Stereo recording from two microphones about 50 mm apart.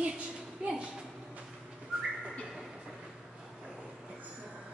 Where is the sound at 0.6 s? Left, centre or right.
Centre.